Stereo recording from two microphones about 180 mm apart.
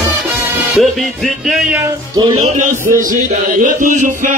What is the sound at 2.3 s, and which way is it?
Music, 45° right (ahead or behind).